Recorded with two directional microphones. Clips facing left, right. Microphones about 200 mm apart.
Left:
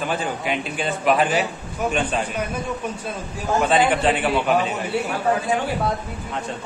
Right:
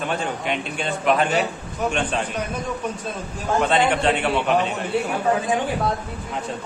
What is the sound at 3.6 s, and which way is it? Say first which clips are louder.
A man's voice: left 1 dB; 5° left (ahead or behind).